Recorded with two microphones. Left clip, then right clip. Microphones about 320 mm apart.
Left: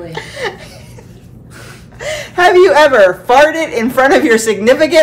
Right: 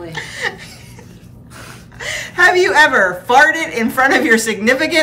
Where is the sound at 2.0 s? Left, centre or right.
Centre.